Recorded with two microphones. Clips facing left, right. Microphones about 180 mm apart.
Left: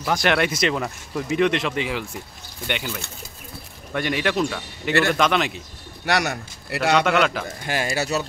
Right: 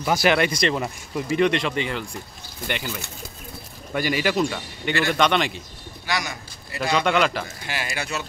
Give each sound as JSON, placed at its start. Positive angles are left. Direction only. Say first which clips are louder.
{"t": 0.0, "sound": "speech", "louder": "right 1 dB", "side_deg": -5}
{"t": 6.0, "sound": "a man's voice", "louder": "left 6 dB", "side_deg": 65}
{"t": 7.0, "sound": "speech", "louder": "right 2 dB", "side_deg": 0}
{"t": 7.4, "sound": "speech", "louder": "left 6 dB", "side_deg": 45}